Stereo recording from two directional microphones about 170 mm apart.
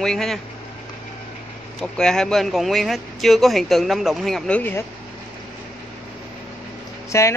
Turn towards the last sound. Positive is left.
turn(degrees=15)  # may be behind; listen again after turning